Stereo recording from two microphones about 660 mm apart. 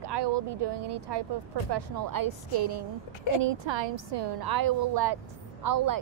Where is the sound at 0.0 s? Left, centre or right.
Right.